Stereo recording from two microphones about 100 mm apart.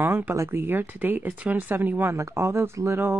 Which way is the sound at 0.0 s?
25° right (ahead or behind).